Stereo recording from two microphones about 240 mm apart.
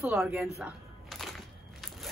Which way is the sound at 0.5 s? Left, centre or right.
Centre.